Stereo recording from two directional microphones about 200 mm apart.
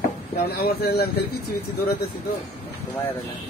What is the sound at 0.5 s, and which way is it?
Speech, 50° left (ahead or behind).